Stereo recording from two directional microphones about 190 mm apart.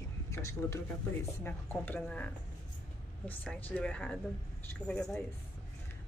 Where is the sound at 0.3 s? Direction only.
15° left (ahead or behind).